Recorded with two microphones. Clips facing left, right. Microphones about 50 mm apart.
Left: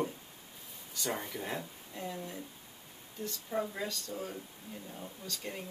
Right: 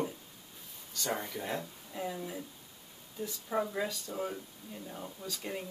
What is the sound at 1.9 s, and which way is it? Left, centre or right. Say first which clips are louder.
Speech: right 3 dB; centre.